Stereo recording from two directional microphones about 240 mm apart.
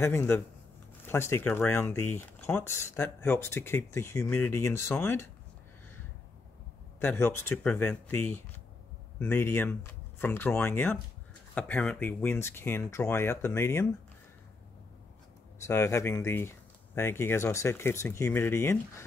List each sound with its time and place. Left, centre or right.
0.0 s speech: centre
7.0 s speech: centre
15.6 s speech: centre